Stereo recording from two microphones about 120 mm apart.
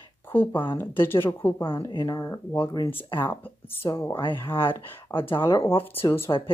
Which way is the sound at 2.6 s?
35° left (ahead or behind).